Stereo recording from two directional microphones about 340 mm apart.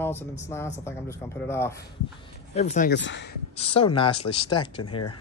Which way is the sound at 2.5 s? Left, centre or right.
Centre.